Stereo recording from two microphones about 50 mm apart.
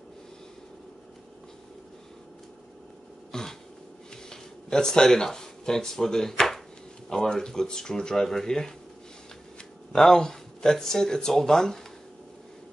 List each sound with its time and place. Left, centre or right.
3.3 s a sound: centre
4.3 s speech: centre
9.9 s speech: centre